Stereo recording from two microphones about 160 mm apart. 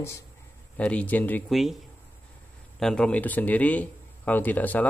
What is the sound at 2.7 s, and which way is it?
Speech, 5° left (ahead or behind).